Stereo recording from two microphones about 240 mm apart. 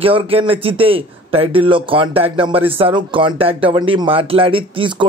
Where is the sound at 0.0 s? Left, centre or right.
Right.